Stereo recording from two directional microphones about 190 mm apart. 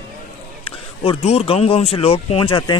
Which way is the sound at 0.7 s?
30° left (ahead or behind).